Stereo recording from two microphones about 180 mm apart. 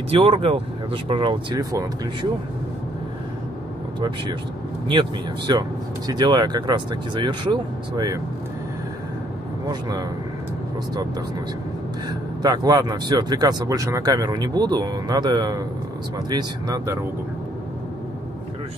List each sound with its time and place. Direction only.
0.1 s speech: 30° right (ahead or behind)
5.5 s speech: 25° right (ahead or behind)
9.7 s speech: 20° right (ahead or behind)
12.1 s speech: 20° right (ahead or behind)